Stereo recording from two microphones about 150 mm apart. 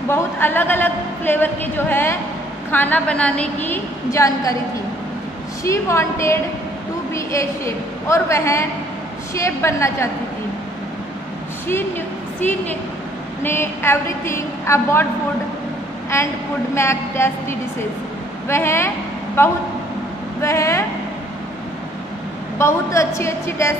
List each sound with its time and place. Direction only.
0.1 s a woman's voice: 15° left (ahead or behind)
5.6 s a woman's voice: 20° left (ahead or behind)
13.4 s a woman's voice: 15° left (ahead or behind)
16.1 s a woman's voice: 15° left (ahead or behind)
22.6 s a woman's voice: 20° left (ahead or behind)